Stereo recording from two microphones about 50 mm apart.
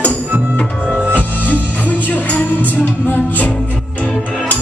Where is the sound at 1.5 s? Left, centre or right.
Left.